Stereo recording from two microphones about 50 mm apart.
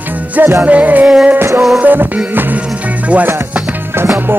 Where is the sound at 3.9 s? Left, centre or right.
Right.